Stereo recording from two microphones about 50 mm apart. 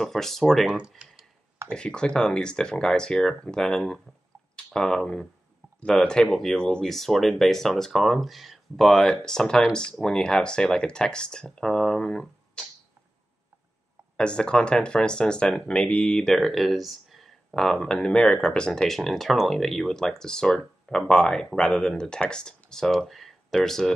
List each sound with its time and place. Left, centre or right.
0.0 s speech: centre
0.7 s speech: centre
1.7 s speech: centre
6.9 s speech: centre
14.1 s speech: centre
16.1 s speech: centre
17.6 s speech: centre
18.7 s speech: centre